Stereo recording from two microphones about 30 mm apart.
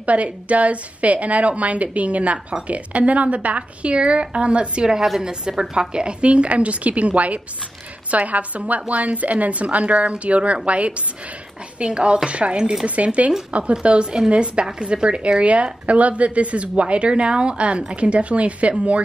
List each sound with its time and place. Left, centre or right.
0.0 s a woman's voice: right
11.8 s a woman's voice: right
12.8 s a woman's voice: right